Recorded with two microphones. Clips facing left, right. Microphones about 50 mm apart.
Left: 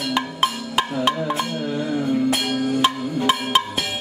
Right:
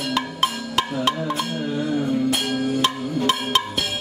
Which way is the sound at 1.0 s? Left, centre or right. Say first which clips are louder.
Left 1 dB; left.